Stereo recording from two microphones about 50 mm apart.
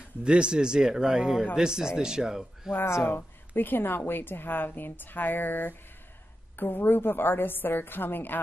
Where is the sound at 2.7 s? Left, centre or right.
Left.